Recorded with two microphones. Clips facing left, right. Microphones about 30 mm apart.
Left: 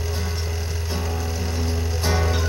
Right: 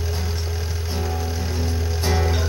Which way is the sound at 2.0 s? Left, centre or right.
Centre.